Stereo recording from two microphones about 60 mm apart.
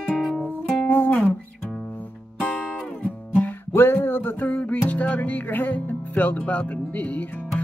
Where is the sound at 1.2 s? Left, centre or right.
Centre.